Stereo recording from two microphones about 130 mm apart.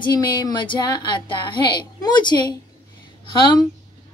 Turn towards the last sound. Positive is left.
turn(degrees=40)  # may be behind; listen again after turning